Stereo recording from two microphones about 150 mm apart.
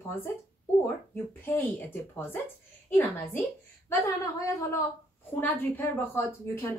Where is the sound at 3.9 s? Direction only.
20° left (ahead or behind).